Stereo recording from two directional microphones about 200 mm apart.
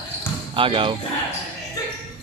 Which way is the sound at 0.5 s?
25° right (ahead or behind).